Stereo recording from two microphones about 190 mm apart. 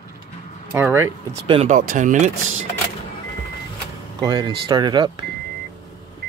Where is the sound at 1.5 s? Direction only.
35° right (ahead or behind).